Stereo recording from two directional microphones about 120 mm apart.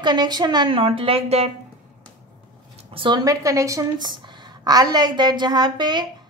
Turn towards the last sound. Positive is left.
turn(degrees=-35)  # may be behind; listen again after turning